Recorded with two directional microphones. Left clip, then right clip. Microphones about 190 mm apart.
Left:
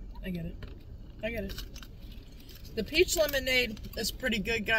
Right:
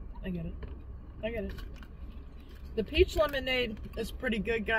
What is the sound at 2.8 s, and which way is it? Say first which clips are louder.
Speech: left 1 dB; 40° left (ahead or behind).